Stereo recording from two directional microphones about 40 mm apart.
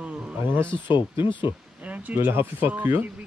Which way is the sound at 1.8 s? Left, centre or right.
Right.